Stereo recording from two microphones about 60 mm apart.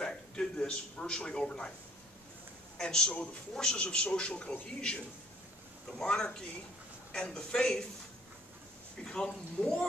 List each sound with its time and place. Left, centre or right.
0.0 s a man's voice: centre
2.8 s a man's voice: centre
9.1 s a man's voice: centre